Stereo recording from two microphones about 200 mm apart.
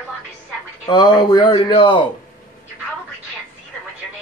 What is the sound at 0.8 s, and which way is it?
Speech, 20° left (ahead or behind).